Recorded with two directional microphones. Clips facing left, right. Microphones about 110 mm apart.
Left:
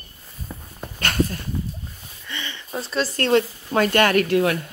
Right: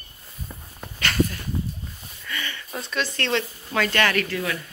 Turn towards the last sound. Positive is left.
turn(degrees=55)  # may be behind; listen again after turning